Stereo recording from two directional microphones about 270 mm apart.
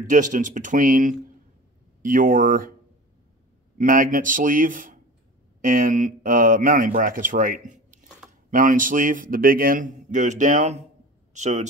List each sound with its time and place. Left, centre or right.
0.0 s a man's voice: right
3.7 s a man's voice: right
7.6 s a sound: right
8.5 s a man's voice: right